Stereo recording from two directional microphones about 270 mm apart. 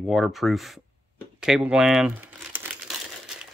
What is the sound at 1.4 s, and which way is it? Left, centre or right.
Crumpling, centre.